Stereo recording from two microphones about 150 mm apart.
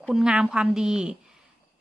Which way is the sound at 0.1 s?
5° right (ahead or behind).